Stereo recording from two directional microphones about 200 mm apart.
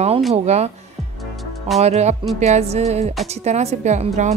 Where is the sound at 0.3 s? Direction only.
35° right (ahead or behind).